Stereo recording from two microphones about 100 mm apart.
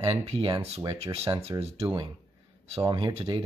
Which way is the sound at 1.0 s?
90° right.